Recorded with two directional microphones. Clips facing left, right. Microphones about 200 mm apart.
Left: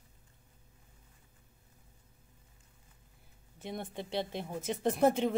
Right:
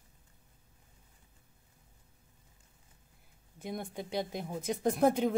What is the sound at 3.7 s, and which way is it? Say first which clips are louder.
A woman's voice: right 1 dB; centre (ahead or behind).